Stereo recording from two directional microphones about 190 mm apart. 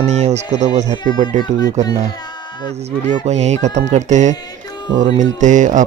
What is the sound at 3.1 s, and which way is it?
Speech, 35° right (ahead or behind).